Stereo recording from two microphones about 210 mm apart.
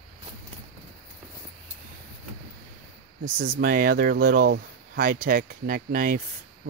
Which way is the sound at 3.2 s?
45° right (ahead or behind).